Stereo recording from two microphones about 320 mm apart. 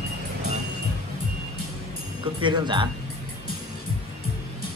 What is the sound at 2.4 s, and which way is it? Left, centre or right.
Speech, centre.